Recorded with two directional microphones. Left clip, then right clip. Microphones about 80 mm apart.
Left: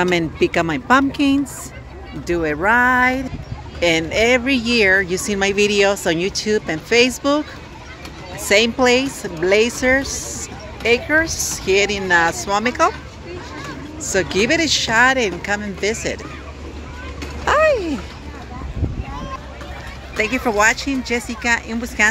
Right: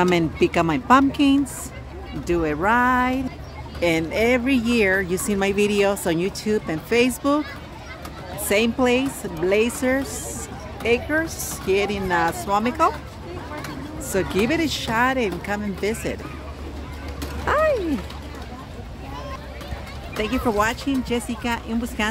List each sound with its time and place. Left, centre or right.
0.1 s speech: right
1.1 s speech: right
8.5 s speech: centre
9.9 s a sound: centre
11.2 s speech: centre
14.1 s speech: right
14.9 s speech: centre
15.5 s speech: right
17.5 s a sound: right
20.2 s speech: centre